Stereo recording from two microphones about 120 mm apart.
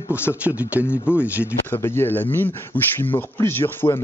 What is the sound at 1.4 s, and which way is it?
Speech, 20° left (ahead or behind).